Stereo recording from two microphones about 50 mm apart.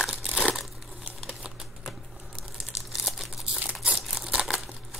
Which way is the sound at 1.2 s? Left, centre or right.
Centre.